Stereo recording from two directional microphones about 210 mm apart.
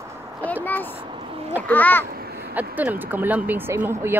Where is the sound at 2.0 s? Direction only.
45° right (ahead or behind).